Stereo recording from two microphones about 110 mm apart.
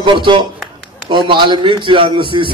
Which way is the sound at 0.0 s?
45° right (ahead or behind).